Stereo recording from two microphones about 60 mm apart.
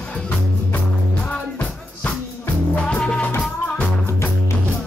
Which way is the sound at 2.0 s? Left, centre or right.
Left.